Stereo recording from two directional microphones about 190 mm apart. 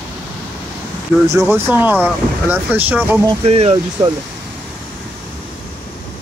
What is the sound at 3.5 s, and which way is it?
Speech, 30° right (ahead or behind).